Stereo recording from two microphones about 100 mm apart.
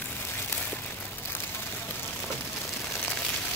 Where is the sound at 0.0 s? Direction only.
20° left (ahead or behind).